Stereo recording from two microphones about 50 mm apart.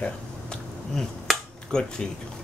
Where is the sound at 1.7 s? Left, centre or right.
Centre.